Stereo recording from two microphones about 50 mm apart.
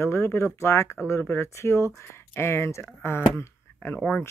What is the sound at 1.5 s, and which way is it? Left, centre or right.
Speech, left.